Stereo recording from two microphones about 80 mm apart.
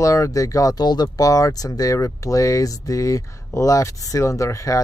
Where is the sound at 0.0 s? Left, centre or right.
Left.